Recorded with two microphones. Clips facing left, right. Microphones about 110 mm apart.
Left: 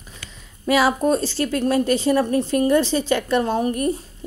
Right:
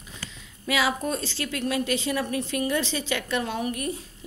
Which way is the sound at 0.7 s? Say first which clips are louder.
Left 8 dB; 40° left (ahead or behind).